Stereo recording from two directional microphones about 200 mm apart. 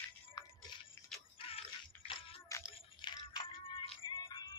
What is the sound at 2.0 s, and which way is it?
Music, 25° left (ahead or behind).